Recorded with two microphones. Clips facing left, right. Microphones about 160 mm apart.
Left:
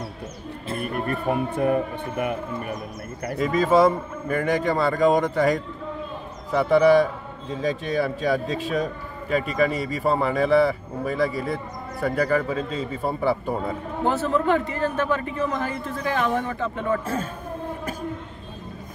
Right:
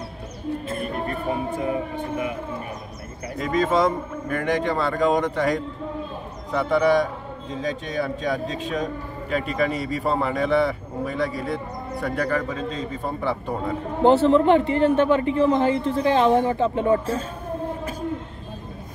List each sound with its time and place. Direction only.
1.3 s music: 60° left (ahead or behind)
3.3 s a man's voice: 5° left (ahead or behind)
14.0 s a man's voice: 25° right (ahead or behind)